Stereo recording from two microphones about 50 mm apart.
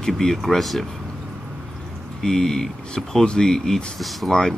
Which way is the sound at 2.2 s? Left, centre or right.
Centre.